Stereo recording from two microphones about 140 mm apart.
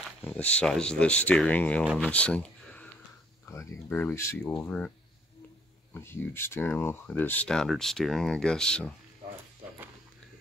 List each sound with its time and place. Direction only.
0.2 s speech: 10° left (ahead or behind)
5.9 s speech: 15° left (ahead or behind)